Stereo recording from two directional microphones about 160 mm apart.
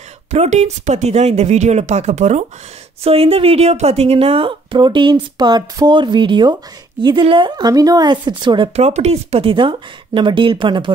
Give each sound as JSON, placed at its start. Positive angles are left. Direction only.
{"t": 0.3, "sound": "a woman's voice", "side_deg": -45}
{"t": 8.7, "sound": "a woman's voice", "side_deg": -40}